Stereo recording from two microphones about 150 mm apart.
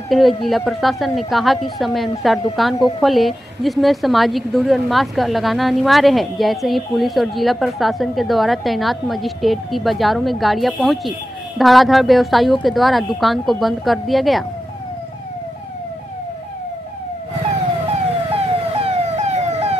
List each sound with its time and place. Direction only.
0.1 s a woman's voice: centre (ahead or behind)
18.3 s emergency vehicle: 40° right (ahead or behind)